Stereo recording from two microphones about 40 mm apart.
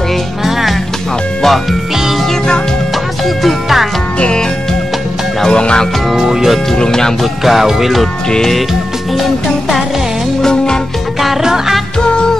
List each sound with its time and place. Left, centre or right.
1.4 s speech: centre
3.4 s music: centre
4.2 s music: left
5.5 s speech: left
6.1 s speech: centre
6.7 s speech: centre
7.4 s music: centre
8.3 s speech: centre
10.4 s music: centre
11.4 s speech: centre
12.0 s music: left